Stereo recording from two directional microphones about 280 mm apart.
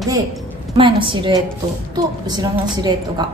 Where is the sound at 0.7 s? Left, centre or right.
Centre.